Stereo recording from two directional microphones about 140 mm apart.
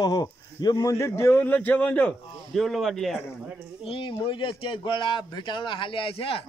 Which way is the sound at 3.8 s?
40° left (ahead or behind).